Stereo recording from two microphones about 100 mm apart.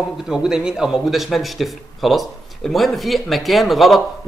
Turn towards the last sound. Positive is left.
turn(degrees=0)  # may be behind; listen again after turning